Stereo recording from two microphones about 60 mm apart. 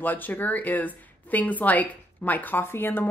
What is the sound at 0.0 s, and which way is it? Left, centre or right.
Speech, left.